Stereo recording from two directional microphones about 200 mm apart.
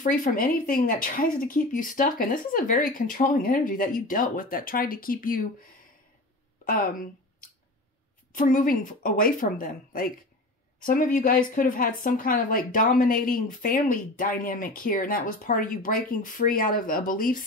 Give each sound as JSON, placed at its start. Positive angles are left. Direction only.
{"t": 0.0, "sound": "speech", "side_deg": 40}
{"t": 6.6, "sound": "a woman's voice", "side_deg": 45}
{"t": 8.3, "sound": "speech", "side_deg": 40}